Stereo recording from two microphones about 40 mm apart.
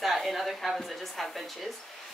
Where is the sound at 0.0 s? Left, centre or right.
Centre.